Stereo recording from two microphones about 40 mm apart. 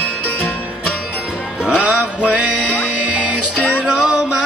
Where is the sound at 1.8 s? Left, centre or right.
Right.